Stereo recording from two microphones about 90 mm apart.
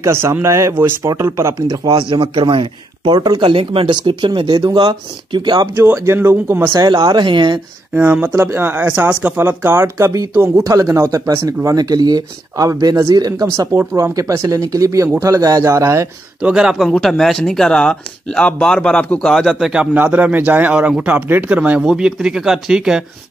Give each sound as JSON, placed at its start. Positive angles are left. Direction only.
{"t": 0.0, "sound": "speech", "side_deg": -30}
{"t": 1.9, "sound": "speech", "side_deg": -75}
{"t": 4.8, "sound": "speech", "side_deg": -60}
{"t": 5.8, "sound": "speech", "side_deg": -25}
{"t": 6.7, "sound": "speech", "side_deg": -60}
{"t": 7.9, "sound": "speech", "side_deg": -20}
{"t": 13.9, "sound": "speech", "side_deg": -35}
{"t": 16.3, "sound": "speech", "side_deg": -10}
{"t": 19.7, "sound": "speech", "side_deg": -15}